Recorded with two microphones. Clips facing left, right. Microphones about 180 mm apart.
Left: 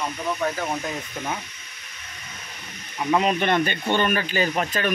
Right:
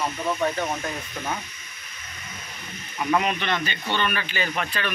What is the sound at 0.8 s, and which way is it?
Speech, 10° left (ahead or behind).